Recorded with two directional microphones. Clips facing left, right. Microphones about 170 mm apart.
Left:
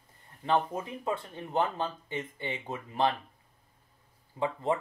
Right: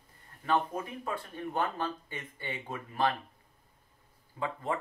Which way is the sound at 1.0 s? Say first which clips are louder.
Left 2 dB; 25° left (ahead or behind).